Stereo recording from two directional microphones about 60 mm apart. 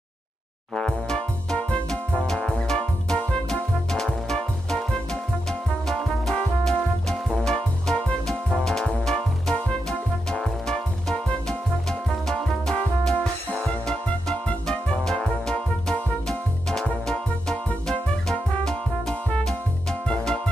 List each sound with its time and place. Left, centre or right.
0.7 s music: centre